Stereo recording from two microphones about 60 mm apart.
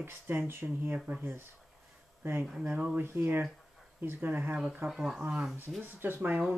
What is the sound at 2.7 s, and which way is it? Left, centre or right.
Speech, centre.